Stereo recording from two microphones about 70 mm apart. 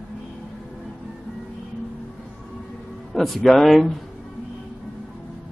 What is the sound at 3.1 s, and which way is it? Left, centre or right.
Speech, centre.